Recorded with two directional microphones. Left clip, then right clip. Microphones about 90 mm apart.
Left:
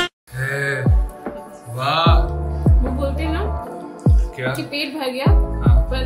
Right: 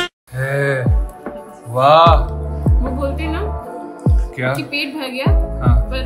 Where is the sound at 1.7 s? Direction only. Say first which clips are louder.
Right 9 dB; 45° right (ahead or behind).